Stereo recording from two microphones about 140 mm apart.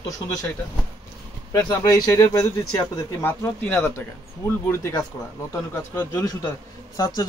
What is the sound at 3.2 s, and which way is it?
Speech, 10° left (ahead or behind).